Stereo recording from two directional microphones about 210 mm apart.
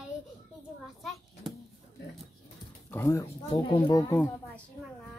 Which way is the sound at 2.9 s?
10° left (ahead or behind).